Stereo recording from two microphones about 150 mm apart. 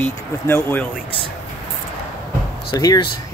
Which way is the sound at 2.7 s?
25° left (ahead or behind).